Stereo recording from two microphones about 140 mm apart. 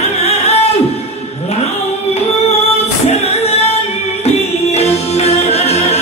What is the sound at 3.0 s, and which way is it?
Music, 50° left (ahead or behind).